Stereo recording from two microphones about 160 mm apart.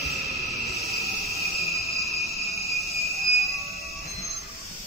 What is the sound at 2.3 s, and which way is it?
Cricket, centre (ahead or behind).